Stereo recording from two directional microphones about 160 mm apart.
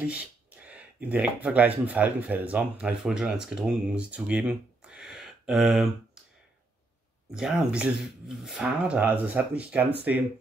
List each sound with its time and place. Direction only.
0.0 s speech: 10° right (ahead or behind)
7.3 s speech: 5° right (ahead or behind)